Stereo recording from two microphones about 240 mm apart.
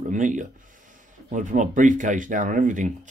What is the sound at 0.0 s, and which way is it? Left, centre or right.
Speech, right.